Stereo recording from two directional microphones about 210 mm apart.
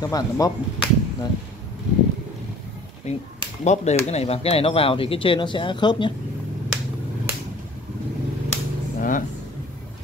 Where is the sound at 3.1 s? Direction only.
35° left (ahead or behind).